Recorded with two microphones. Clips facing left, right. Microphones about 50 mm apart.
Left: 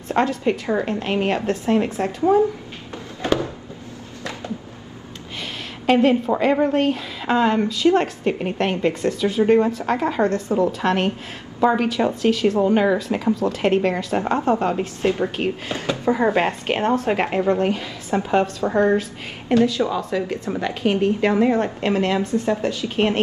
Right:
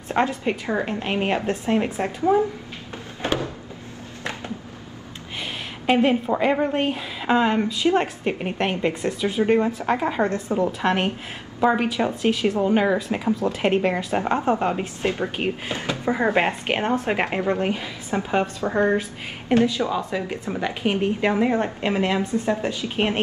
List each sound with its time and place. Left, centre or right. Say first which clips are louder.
0.1 s speech: left 2 dB; centre
5.9 s a woman's voice: left 3 dB; centre
9.7 s speech: left 1 dB; centre